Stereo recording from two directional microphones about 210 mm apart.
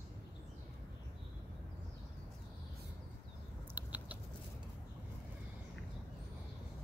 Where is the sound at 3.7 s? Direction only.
10° right (ahead or behind).